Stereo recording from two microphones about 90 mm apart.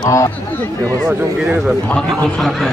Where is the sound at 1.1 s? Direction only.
5° right (ahead or behind).